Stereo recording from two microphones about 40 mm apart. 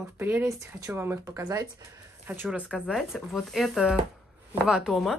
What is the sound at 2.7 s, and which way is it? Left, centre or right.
Speech, centre.